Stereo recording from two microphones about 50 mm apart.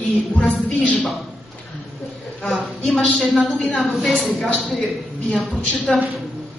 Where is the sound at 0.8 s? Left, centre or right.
Left.